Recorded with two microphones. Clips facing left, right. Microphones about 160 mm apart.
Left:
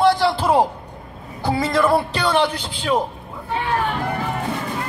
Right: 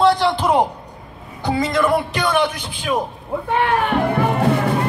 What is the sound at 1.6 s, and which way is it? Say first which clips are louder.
Speech: left 1 dB; 15° right (ahead or behind).